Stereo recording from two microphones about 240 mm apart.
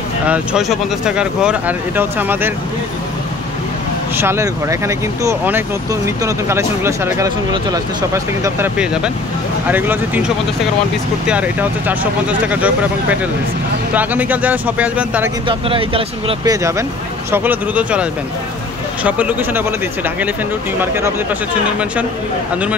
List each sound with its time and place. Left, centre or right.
0.3 s speech: centre
4.2 s speech: centre
15.4 s speech: right; by 18.0 s centre
19.0 s speech: centre
20.8 s speech: centre